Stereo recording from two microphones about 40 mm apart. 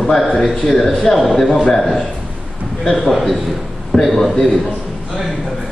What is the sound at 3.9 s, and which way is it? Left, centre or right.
Speech, centre.